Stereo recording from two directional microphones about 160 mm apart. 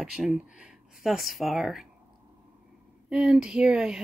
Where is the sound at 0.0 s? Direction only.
Centre (ahead or behind).